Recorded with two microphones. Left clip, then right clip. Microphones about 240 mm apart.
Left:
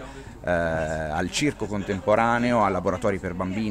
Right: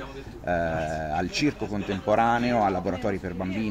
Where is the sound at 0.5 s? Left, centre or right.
Left.